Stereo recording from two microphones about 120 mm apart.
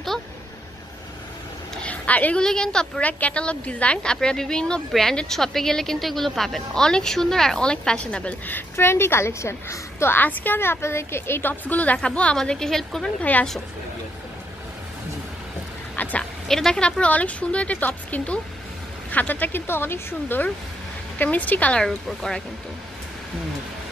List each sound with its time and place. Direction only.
1.8 s a woman's voice: 10° left (ahead or behind)
16.0 s a woman's voice: 10° left (ahead or behind)